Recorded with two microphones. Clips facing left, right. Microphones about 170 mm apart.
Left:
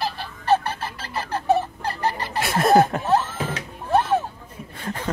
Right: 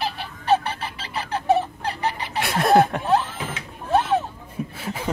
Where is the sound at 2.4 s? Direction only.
Centre (ahead or behind).